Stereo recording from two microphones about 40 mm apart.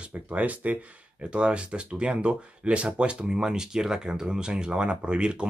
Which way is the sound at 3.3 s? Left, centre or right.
Centre.